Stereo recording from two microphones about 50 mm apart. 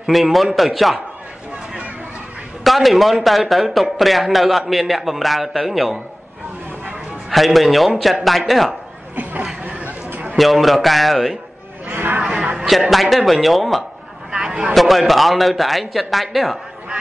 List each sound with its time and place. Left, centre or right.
0.0 s a man's voice: centre
2.6 s a man's voice: centre
7.2 s a man's voice: centre
9.1 s chuckle: right
9.7 s chatter: right
10.0 s a sound: right
10.3 s a man's voice: centre
11.9 s honk: right
12.2 s music: centre
12.5 s a sound: centre
12.9 s a man's voice: centre
14.3 s vehicle: centre
14.7 s a man's voice: centre